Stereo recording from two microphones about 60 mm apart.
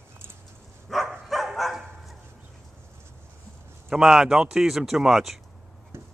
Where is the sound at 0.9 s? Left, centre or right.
Centre.